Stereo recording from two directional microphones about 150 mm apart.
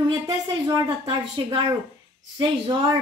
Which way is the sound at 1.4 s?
30° right (ahead or behind).